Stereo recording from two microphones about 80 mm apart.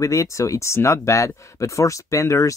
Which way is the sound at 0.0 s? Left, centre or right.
Left.